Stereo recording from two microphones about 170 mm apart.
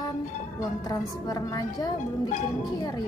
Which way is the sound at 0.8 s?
25° left (ahead or behind).